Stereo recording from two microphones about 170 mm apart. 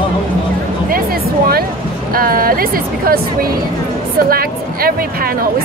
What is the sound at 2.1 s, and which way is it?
Speech, 60° right (ahead or behind).